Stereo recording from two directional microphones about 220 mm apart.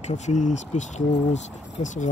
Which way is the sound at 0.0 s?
30° left (ahead or behind).